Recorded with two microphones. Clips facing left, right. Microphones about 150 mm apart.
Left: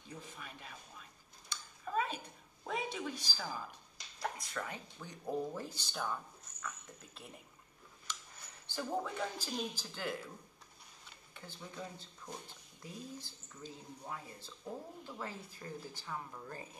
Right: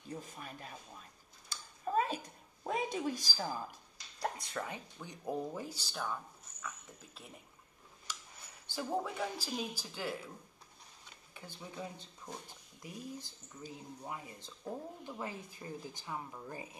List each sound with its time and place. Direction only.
0.2 s speech: 40° right (ahead or behind)
1.9 s a sound: 40° right (ahead or behind)
2.6 s a woman's voice: 40° right (ahead or behind)
4.2 s speech: 20° right (ahead or behind); by 7.3 s centre (ahead or behind)
8.7 s speech: 10° right (ahead or behind)
11.3 s speech: 15° right (ahead or behind)